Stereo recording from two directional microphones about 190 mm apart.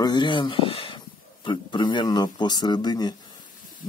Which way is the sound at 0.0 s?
25° left (ahead or behind).